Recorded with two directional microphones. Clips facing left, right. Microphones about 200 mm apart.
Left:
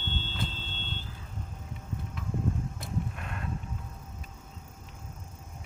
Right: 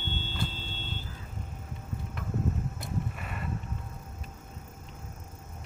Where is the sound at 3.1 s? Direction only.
5° right (ahead or behind).